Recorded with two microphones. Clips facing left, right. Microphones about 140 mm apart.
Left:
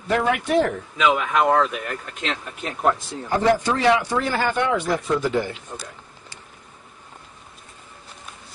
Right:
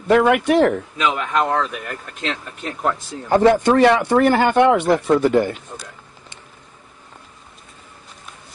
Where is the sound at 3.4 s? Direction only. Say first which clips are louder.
Right 6 dB; 55° right (ahead or behind).